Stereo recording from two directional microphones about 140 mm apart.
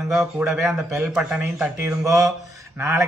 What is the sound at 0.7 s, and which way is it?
A man's voice, 15° right (ahead or behind).